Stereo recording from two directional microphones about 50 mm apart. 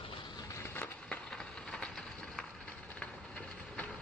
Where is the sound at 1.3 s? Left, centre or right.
Centre.